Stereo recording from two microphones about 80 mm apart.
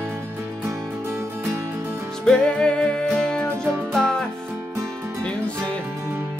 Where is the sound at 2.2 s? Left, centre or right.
Centre.